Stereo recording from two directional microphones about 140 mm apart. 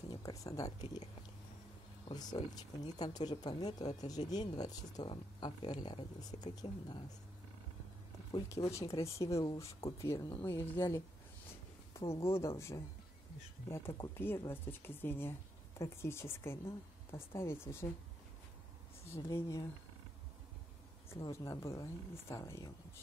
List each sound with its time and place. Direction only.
0.1 s speech: 25° left (ahead or behind)
0.7 s speech: 50° left (ahead or behind)
2.0 s speech: 30° left (ahead or behind)
8.3 s speech: 20° left (ahead or behind)
12.1 s speech: 20° left (ahead or behind)
19.1 s speech: 20° left (ahead or behind)
21.2 s speech: 20° left (ahead or behind)